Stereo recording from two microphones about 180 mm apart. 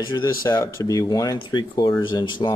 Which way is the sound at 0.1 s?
25° left (ahead or behind).